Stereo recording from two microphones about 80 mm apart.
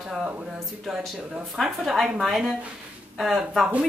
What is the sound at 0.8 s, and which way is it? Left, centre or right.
Speech, centre.